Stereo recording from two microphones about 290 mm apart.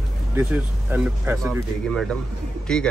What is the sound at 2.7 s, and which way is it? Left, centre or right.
Speech, centre.